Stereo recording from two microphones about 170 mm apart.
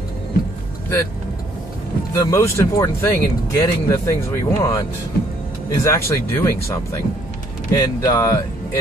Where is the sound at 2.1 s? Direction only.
20° left (ahead or behind).